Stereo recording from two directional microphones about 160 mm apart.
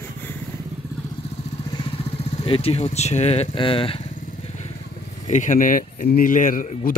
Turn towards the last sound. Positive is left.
turn(degrees=55)  # may be behind; listen again after turning